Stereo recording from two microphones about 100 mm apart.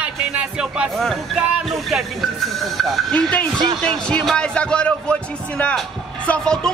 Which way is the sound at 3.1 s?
10° left (ahead or behind).